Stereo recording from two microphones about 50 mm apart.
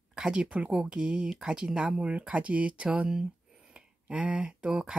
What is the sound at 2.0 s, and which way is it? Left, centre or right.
Speech, right.